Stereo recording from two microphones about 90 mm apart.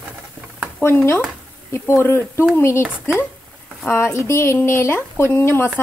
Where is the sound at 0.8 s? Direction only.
25° left (ahead or behind).